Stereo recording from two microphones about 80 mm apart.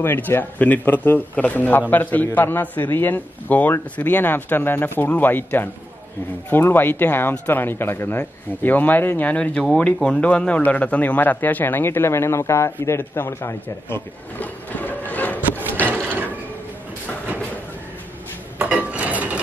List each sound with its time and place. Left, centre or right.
0.0 s a man's voice: left
15.8 s wood: right
18.6 s a sound: centre